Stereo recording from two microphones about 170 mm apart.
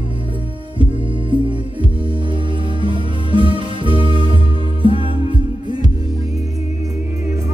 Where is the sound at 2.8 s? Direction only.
30° right (ahead or behind).